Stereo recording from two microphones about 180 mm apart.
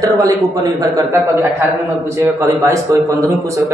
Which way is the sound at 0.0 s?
20° right (ahead or behind).